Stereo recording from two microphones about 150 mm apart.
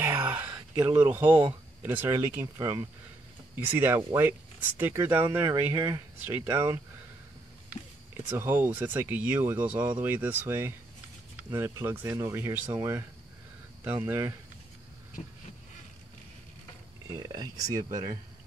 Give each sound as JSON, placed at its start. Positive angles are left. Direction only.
{"t": 0.0, "sound": "speech", "side_deg": -15}
{"t": 3.5, "sound": "speech", "side_deg": -15}
{"t": 8.4, "sound": "speech", "side_deg": -15}
{"t": 14.0, "sound": "speech", "side_deg": -20}
{"t": 17.1, "sound": "speech", "side_deg": -25}